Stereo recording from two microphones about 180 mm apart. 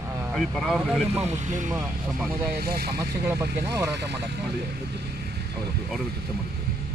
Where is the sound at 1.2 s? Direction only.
40° right (ahead or behind).